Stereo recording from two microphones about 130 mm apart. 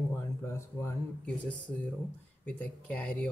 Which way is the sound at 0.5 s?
20° left (ahead or behind).